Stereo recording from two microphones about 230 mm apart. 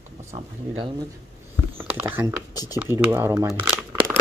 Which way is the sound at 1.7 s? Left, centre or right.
Centre.